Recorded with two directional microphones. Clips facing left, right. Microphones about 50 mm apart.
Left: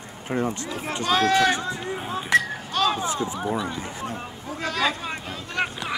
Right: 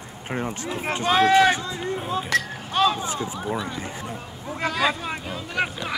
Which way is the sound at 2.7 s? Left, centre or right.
Right.